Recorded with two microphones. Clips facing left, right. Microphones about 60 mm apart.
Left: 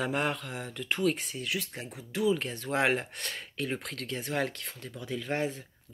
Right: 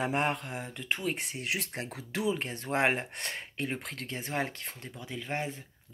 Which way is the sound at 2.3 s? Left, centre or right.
Right.